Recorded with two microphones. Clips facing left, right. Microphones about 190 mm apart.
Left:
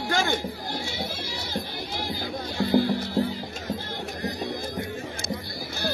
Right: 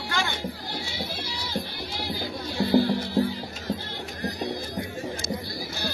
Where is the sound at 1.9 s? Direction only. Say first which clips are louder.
Even; 50° left (ahead or behind).